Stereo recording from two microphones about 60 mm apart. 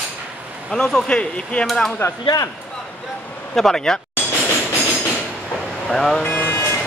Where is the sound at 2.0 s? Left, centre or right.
Left.